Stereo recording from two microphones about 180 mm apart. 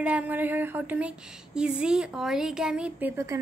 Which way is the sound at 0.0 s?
10° right (ahead or behind).